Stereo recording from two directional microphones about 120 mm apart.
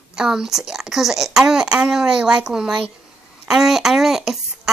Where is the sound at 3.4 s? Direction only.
5° right (ahead or behind).